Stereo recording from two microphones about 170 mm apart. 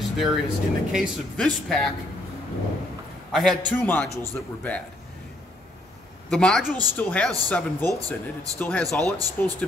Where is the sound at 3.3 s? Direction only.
Centre (ahead or behind).